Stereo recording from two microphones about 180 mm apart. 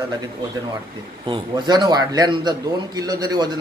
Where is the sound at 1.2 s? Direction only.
25° right (ahead or behind).